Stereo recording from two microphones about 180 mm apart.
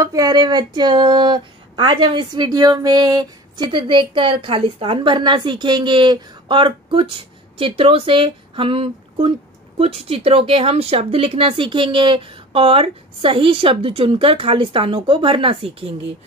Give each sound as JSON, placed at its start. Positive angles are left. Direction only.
{"t": 0.0, "sound": "speech", "side_deg": -20}